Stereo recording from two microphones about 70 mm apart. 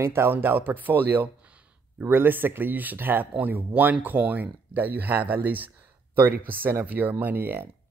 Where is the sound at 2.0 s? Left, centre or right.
Right.